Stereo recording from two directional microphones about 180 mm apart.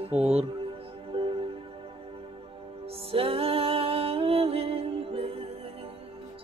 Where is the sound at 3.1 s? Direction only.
30° right (ahead or behind).